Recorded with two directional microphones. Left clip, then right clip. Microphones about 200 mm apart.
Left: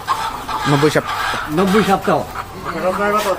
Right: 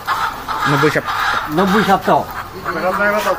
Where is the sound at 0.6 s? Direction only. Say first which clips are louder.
Right 1 dB; 15° left (ahead or behind).